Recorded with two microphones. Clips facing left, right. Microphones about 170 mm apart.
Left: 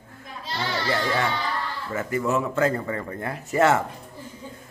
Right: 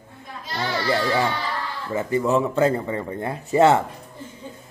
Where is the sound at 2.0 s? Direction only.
25° right (ahead or behind).